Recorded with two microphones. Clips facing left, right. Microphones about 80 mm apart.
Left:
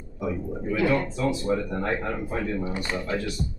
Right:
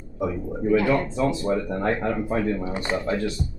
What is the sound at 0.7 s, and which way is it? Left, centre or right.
Speech, right.